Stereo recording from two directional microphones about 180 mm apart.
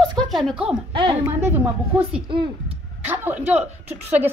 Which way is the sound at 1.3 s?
10° right (ahead or behind).